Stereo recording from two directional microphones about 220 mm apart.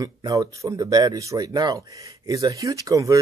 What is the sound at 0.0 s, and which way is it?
Speech, 15° right (ahead or behind).